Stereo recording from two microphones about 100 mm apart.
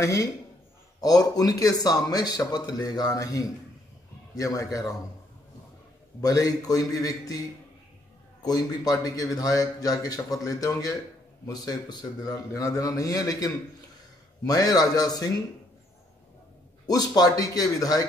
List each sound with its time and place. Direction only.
0.0 s a man's voice: 35° left (ahead or behind)
6.2 s a man's voice: 35° left (ahead or behind)
8.4 s a man's voice: 40° left (ahead or behind)
16.8 s a man's voice: 40° left (ahead or behind)